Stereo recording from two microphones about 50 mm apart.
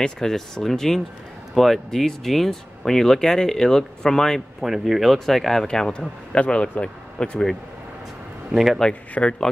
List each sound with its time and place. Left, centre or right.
0.0 s speech: centre
4.6 s speech: centre; by 6.7 s left
6.8 s speech: centre
8.5 s speech: centre
9.2 s speech: left